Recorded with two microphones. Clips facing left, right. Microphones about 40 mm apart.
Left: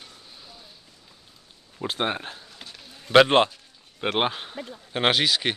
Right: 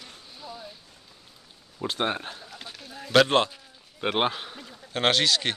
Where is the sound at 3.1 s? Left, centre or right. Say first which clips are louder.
Left 4 dB; left.